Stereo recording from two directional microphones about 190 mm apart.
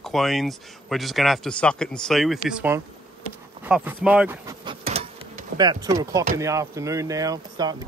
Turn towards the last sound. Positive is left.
turn(degrees=-20)  # may be behind; listen again after turning